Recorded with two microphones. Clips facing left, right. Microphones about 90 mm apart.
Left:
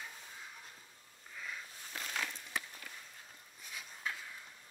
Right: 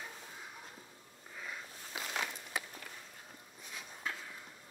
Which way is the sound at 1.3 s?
10° right (ahead or behind).